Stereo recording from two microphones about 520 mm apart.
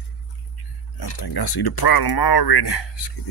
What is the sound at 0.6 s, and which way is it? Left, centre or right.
Speech, left.